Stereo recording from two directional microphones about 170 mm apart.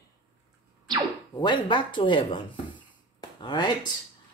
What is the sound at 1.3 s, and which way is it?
Speech, 25° left (ahead or behind).